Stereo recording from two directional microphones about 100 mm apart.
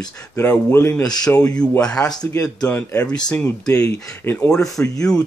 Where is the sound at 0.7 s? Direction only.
25° left (ahead or behind).